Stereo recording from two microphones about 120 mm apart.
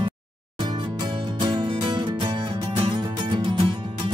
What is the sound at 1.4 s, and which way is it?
Music, 45° right (ahead or behind).